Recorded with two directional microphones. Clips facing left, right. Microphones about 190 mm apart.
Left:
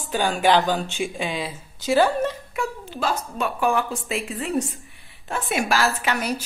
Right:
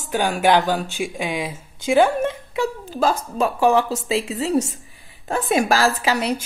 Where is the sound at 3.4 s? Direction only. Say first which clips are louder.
Right 6 dB; 30° right (ahead or behind).